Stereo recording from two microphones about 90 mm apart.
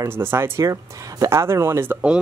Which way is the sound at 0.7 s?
40° right (ahead or behind).